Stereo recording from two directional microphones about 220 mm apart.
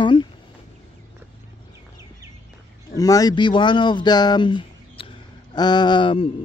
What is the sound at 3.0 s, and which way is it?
Speech, 15° left (ahead or behind).